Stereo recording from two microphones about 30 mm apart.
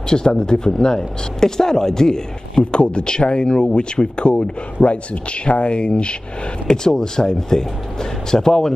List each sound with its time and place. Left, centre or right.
0.1 s speech: left
2.7 s speech: left
6.7 s speech: left